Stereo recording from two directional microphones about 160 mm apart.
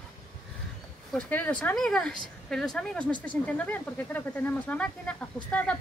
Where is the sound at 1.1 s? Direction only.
10° left (ahead or behind).